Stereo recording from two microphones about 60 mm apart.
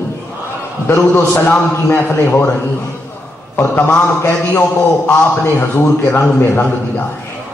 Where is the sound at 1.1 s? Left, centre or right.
Left.